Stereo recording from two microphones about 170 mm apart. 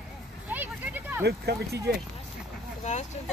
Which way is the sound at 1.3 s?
75° right (ahead or behind).